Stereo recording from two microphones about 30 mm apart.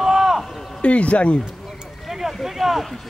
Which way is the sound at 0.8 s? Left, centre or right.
Left.